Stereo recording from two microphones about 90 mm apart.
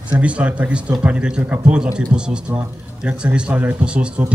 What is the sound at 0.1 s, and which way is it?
A man's voice, 15° right (ahead or behind).